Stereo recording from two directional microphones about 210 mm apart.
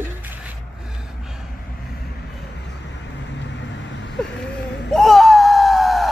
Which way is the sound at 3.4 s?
60° left (ahead or behind).